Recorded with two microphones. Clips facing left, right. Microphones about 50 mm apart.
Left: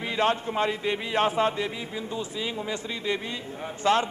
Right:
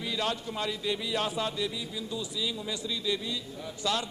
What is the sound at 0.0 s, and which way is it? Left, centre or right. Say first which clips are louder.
Chant: left 7 dB; left.